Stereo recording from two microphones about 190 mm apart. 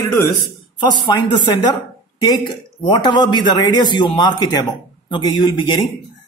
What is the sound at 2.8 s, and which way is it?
Speech, 25° left (ahead or behind).